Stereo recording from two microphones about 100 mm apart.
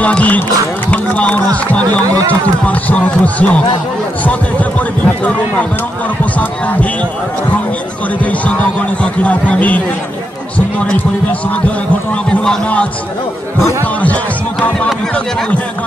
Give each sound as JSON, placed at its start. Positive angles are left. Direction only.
{"t": 0.0, "sound": "speech", "side_deg": 15}
{"t": 0.9, "sound": "a sound", "side_deg": 15}
{"t": 1.5, "sound": "speech", "side_deg": 15}
{"t": 8.2, "sound": "speech", "side_deg": 15}
{"t": 12.1, "sound": "speech", "side_deg": 10}
{"t": 14.0, "sound": "music", "side_deg": 15}